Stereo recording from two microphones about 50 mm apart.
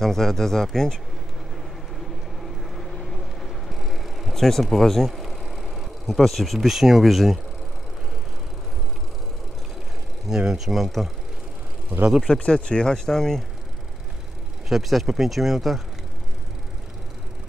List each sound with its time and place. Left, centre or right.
0.0 s speech: centre
2.4 s vehicle: centre
10.2 s speech: centre
12.4 s speech: left
14.7 s speech: centre